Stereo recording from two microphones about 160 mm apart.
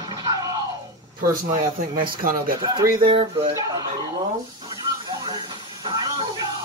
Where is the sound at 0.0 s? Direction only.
25° right (ahead or behind).